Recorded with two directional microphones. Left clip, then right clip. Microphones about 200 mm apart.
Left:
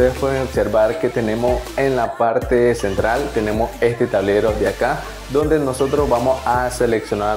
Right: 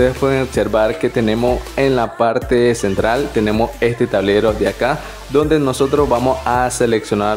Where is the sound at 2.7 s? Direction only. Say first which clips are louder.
Right 2 dB; 35° right (ahead or behind).